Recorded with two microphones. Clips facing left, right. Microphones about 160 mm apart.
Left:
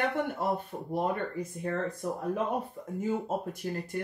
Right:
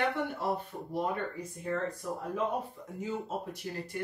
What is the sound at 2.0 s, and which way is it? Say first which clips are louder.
Speech: left 2 dB; 55° left (ahead or behind).